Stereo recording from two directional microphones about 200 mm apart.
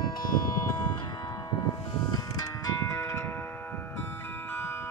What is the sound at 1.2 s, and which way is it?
Music, 15° left (ahead or behind).